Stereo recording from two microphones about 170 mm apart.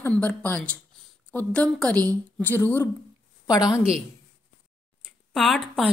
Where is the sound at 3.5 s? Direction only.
20° left (ahead or behind).